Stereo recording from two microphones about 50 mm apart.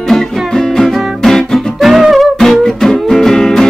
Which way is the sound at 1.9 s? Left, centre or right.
Centre.